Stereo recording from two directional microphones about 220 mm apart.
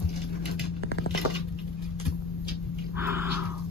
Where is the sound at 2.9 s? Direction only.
10° right (ahead or behind).